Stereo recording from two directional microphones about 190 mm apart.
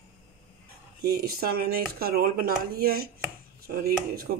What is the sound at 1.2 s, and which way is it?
Speech, 55° right (ahead or behind).